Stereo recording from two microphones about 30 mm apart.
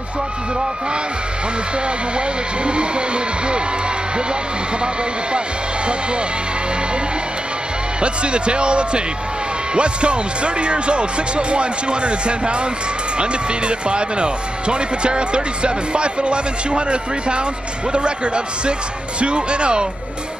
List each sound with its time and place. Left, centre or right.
2.1 s speech: right
8.0 s speech: right